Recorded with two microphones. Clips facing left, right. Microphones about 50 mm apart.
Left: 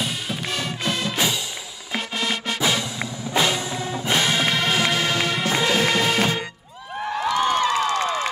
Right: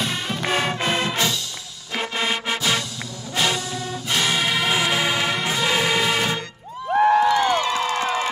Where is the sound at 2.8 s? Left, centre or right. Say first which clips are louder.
Left 2 dB; left.